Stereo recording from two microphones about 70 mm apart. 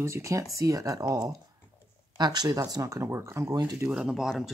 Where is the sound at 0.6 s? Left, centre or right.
Right.